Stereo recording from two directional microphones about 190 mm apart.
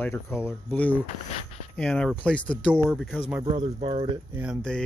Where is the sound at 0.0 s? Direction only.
15° left (ahead or behind); by 3.4 s 5° right (ahead or behind).